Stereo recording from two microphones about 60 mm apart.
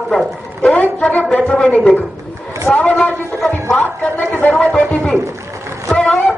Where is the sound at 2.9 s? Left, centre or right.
Centre.